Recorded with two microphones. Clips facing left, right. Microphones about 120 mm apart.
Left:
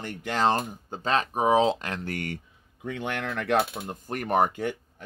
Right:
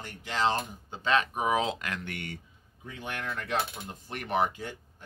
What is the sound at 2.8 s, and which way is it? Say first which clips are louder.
Speech: left 6 dB; 70° left (ahead or behind).